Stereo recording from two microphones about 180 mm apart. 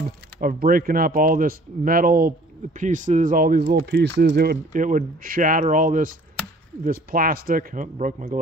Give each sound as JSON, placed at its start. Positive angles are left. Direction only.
{"t": 0.4, "sound": "speech", "side_deg": -50}